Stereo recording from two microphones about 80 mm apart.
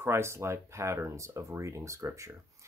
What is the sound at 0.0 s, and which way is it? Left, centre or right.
Speech, right.